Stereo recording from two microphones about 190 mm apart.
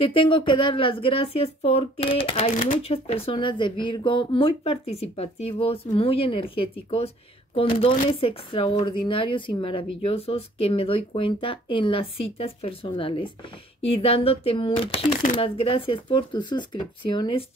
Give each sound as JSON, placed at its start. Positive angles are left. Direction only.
{"t": 0.0, "sound": "speech", "side_deg": 25}